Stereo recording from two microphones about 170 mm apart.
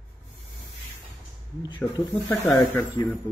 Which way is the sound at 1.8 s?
10° left (ahead or behind).